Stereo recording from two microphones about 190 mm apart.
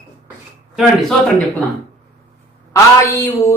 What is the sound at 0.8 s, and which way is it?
Speech, centre (ahead or behind).